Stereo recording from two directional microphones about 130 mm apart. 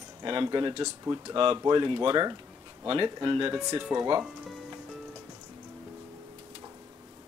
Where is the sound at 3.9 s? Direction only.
25° right (ahead or behind).